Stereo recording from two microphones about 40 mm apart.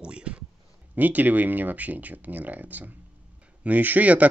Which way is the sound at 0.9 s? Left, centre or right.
Right.